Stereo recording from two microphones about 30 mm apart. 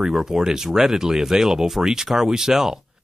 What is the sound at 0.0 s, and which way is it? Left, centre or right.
Speech, centre.